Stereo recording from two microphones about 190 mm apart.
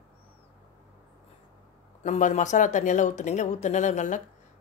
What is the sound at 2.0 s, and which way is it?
A woman's voice, 40° left (ahead or behind).